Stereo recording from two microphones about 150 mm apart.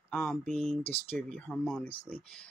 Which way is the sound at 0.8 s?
40° left (ahead or behind).